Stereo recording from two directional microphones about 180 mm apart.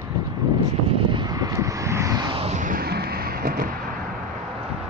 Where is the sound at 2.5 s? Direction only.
50° right (ahead or behind).